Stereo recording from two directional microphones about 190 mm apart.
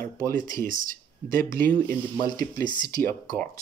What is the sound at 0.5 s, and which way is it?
Speech, 45° right (ahead or behind).